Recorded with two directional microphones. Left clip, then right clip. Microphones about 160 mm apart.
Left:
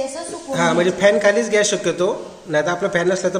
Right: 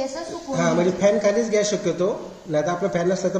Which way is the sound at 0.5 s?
Centre (ahead or behind).